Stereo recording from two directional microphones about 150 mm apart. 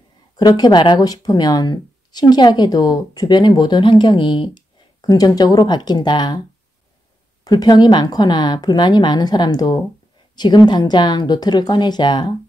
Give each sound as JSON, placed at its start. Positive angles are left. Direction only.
{"t": 0.4, "sound": "speech", "side_deg": 30}
{"t": 7.4, "sound": "speech", "side_deg": 25}